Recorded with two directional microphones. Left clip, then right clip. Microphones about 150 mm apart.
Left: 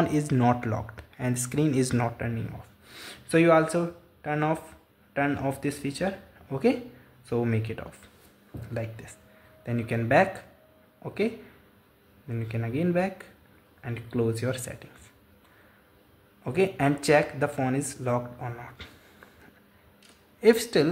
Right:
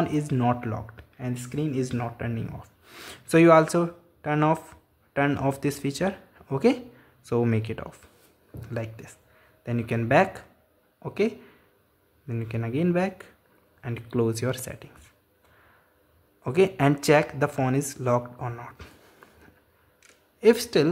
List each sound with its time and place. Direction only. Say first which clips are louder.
0.0 s a sound: left 1 dB; 5° right (ahead or behind)
0.3 s speech: left 1 dB; 5° right (ahead or behind)
2.1 s speech: even; 20° right (ahead or behind)
16.4 s speech: right 3 dB; 25° right (ahead or behind)
20.3 s speech: right 1 dB; 10° right (ahead or behind)